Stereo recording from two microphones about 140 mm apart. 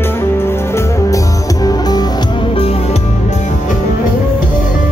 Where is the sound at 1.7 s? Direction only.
30° left (ahead or behind).